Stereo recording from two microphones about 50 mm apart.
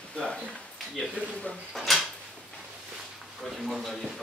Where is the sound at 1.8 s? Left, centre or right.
Centre.